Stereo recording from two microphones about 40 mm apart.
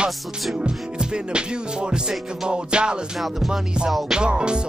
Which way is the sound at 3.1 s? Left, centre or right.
Centre.